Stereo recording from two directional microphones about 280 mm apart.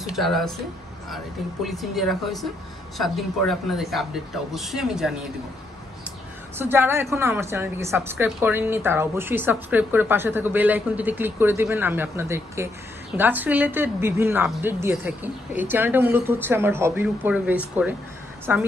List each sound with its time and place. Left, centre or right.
0.0 s speech: centre
6.6 s a woman's voice: centre